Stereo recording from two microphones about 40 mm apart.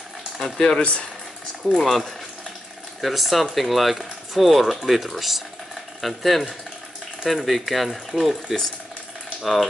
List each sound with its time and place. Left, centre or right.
0.6 s speech: centre
1.8 s speech: centre